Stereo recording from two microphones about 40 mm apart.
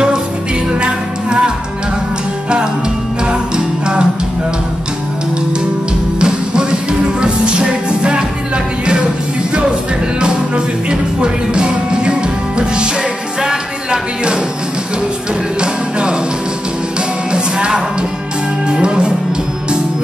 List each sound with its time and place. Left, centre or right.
0.7 s music: right
3.3 s music: right
6.1 s music: right
10.2 s music: right
15.6 s music: right
17.3 s music: right